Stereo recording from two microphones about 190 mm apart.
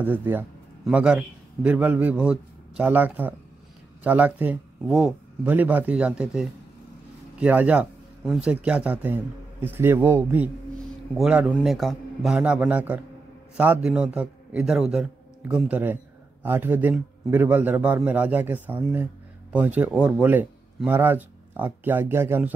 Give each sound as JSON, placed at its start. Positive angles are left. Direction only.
{"t": 0.0, "sound": "a man's voice", "side_deg": -10}